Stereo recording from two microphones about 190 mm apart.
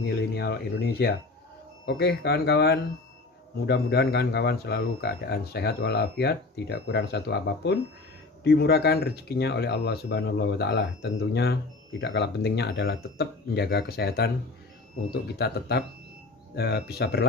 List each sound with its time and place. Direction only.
0.0 s speech: 60° left (ahead or behind)
15.3 s speech: 60° left (ahead or behind)